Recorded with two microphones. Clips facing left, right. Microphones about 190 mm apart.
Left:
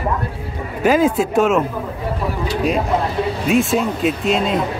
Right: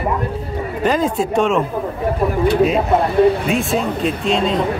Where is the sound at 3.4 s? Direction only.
Centre (ahead or behind).